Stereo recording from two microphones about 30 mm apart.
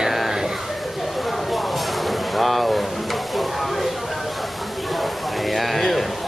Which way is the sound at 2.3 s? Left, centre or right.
Centre.